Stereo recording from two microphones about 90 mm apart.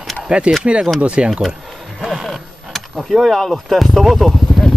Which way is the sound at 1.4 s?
Centre (ahead or behind).